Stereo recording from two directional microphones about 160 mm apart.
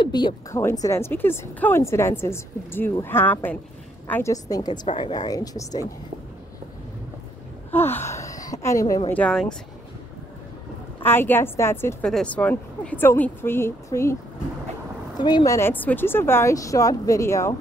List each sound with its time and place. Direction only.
0.0 s a woman's voice: 30° left (ahead or behind)
7.7 s a woman's voice: 15° left (ahead or behind)
9.1 s speech: 5° left (ahead or behind)
11.0 s a woman's voice: 15° left (ahead or behind)
15.1 s a woman's voice: 25° left (ahead or behind)